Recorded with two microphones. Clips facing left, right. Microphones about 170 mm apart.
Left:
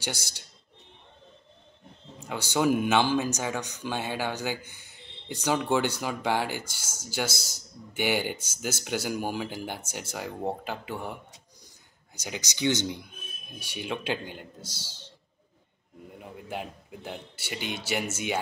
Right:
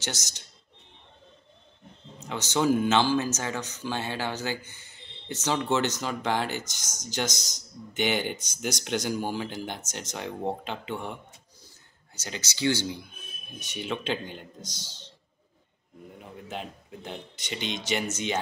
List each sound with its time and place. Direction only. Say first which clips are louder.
0.0 s speech: left 1 dB; 10° left (ahead or behind)
2.1 s speech: even; 10° left (ahead or behind)
12.2 s speech: even; 15° left (ahead or behind)
16.2 s speech: left 1 dB; 10° left (ahead or behind)